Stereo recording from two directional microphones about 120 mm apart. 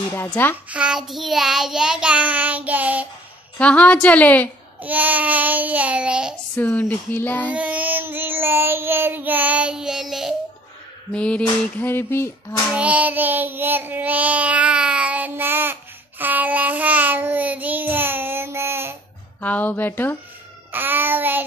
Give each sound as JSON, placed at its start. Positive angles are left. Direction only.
{"t": 0.3, "sound": "speech", "side_deg": 15}
{"t": 0.7, "sound": "child singing", "side_deg": -10}
{"t": 3.5, "sound": "speech", "side_deg": 10}
{"t": 4.8, "sound": "child singing", "side_deg": -15}
{"t": 6.5, "sound": "speech", "side_deg": 15}
{"t": 7.5, "sound": "child singing", "side_deg": -10}
{"t": 11.1, "sound": "a sound", "side_deg": 10}
{"t": 12.7, "sound": "child singing", "side_deg": -10}
{"t": 19.4, "sound": "speech", "side_deg": 15}
{"t": 20.7, "sound": "child singing", "side_deg": -15}